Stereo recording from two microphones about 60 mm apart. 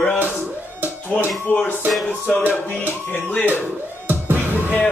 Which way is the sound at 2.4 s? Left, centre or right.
Left.